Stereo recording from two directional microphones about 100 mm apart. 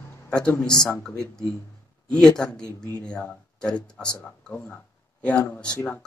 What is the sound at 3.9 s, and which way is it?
Speech, 10° left (ahead or behind).